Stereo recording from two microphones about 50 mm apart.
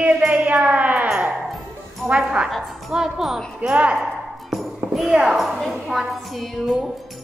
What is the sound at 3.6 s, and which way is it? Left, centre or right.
Music, right.